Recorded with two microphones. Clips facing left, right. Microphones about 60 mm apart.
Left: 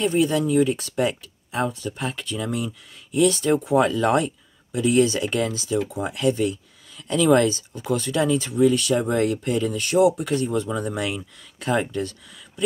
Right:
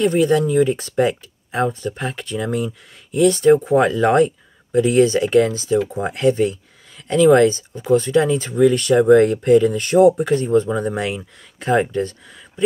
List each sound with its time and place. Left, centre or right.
0.0 s speech: right